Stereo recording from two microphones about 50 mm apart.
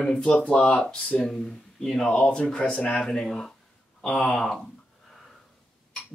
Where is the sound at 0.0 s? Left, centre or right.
Centre.